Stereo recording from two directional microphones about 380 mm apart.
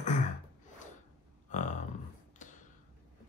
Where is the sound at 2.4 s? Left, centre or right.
Centre.